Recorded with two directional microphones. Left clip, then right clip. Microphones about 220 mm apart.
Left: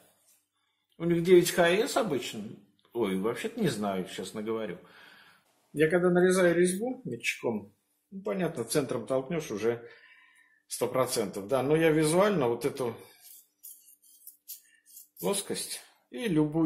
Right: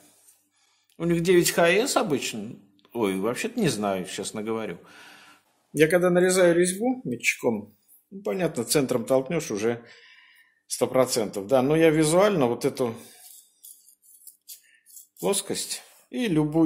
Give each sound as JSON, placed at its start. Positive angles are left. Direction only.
{"t": 0.9, "sound": "speech", "side_deg": -50}
{"t": 15.2, "sound": "speech", "side_deg": -50}